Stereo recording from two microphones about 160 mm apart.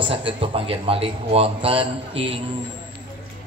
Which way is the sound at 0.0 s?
35° right (ahead or behind).